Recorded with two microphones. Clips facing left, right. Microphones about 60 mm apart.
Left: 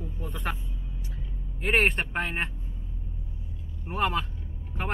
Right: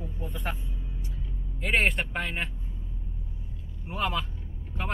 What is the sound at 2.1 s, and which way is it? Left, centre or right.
Speech, left.